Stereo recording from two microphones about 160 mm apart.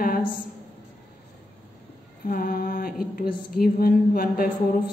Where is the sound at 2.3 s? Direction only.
65° left (ahead or behind).